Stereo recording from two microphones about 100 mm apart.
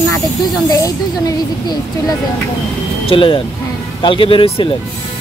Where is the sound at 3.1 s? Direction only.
60° left (ahead or behind).